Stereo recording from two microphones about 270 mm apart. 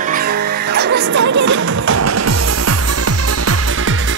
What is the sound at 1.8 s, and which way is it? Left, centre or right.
Music, right.